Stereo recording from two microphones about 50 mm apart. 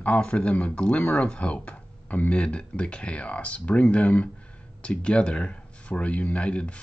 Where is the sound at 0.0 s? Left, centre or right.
Left.